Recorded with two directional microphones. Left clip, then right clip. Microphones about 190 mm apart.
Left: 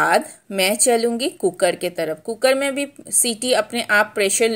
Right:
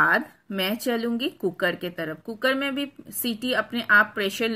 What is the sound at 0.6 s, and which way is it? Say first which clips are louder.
A woman's voice: left 9 dB; 25° left (ahead or behind).